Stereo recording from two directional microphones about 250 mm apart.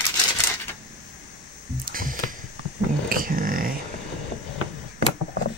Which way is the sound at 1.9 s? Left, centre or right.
Right.